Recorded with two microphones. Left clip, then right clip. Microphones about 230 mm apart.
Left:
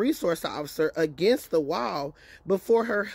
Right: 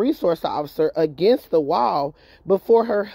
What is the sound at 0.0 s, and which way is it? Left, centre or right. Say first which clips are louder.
A woman's voice: right 6 dB; centre.